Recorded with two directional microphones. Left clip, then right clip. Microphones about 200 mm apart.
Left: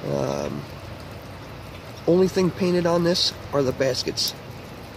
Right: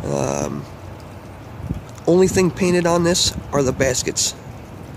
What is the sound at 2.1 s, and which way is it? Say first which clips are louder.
Speech: right 4 dB; 30° right (ahead or behind).